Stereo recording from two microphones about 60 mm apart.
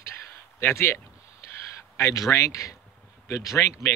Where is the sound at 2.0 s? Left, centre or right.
Left.